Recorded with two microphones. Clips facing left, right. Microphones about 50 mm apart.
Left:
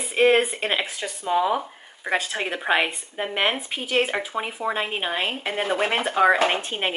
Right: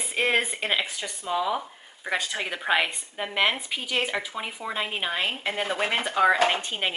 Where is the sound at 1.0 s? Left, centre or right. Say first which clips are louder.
Left 5 dB; left; by 6.9 s centre.